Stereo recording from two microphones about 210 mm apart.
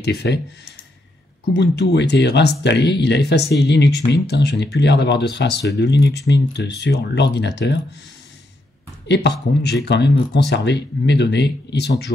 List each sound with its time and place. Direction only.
0.0 s speech: 55° left (ahead or behind)
1.5 s speech: 55° left (ahead or behind)
9.0 s speech: 55° left (ahead or behind)